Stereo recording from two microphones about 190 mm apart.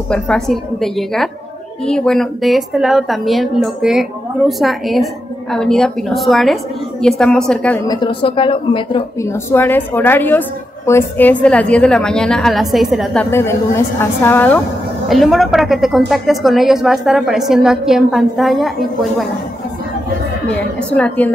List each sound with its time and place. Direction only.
0.1 s a woman's voice: 5° left (ahead or behind)
7.8 s speech: 20° left (ahead or behind)
9.2 s a woman's voice: 15° left (ahead or behind)
20.9 s a woman's voice: 5° left (ahead or behind)